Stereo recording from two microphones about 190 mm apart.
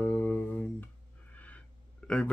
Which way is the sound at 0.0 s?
10° left (ahead or behind).